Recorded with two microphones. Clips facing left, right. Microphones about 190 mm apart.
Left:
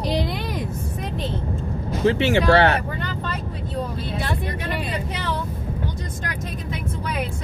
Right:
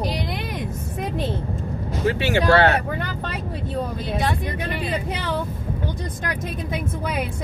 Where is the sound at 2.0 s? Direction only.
25° left (ahead or behind).